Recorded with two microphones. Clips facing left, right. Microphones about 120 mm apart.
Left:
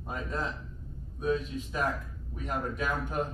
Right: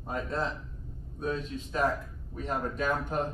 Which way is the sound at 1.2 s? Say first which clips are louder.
Left 3 dB; 10° left (ahead or behind).